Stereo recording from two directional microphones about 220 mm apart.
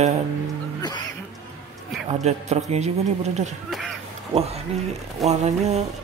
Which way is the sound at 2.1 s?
30° right (ahead or behind).